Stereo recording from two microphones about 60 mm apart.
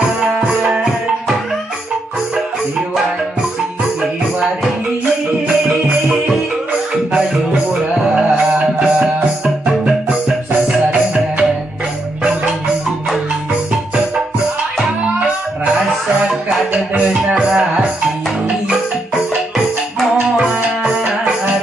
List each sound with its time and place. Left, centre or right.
0.5 s music: centre
8.0 s music: centre
16.3 s music: centre
19.1 s music: centre